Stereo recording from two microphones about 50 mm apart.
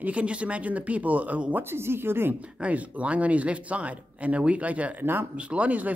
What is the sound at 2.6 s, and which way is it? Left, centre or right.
Speech, right.